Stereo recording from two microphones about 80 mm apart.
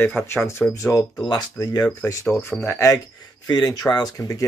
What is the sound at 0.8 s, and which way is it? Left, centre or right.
Speech, left.